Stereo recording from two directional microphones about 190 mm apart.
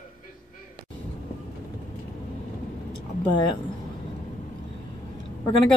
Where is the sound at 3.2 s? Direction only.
25° left (ahead or behind).